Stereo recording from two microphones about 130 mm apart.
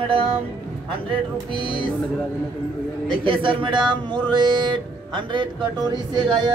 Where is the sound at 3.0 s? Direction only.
40° right (ahead or behind).